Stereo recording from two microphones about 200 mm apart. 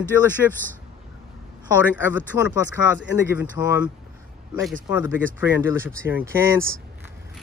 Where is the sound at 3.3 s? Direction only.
10° right (ahead or behind).